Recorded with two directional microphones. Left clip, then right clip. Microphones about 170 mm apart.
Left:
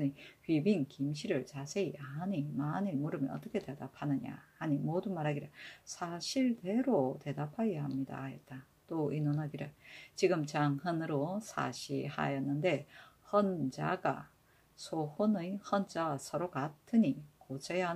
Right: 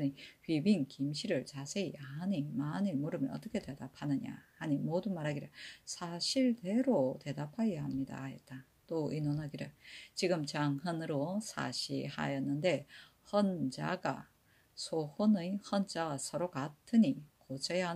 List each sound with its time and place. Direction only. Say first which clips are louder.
0.0 s speech: left 1 dB; 20° right (ahead or behind)